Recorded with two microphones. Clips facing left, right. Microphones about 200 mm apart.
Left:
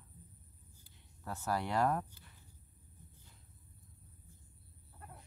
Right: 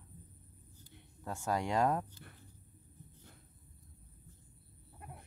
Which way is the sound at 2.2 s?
60° right (ahead or behind).